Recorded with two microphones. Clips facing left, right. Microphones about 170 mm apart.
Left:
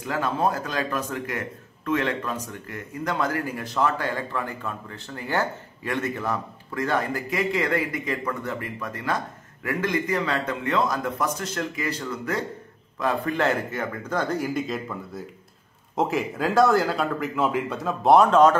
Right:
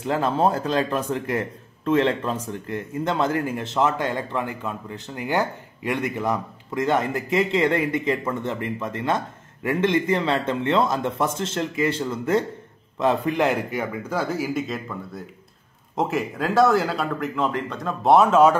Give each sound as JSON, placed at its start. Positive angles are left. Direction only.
{"t": 0.0, "sound": "a man's voice", "side_deg": -30}